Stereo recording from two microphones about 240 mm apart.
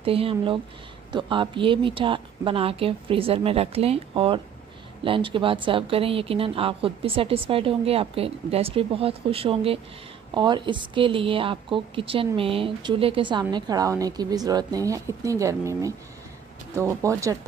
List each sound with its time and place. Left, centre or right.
0.0 s a woman's voice: right